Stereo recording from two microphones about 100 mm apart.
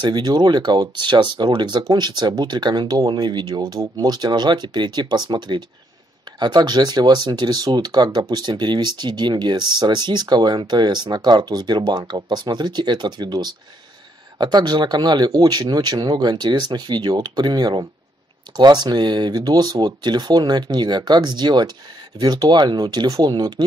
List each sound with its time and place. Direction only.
0.0 s speech: 45° right (ahead or behind)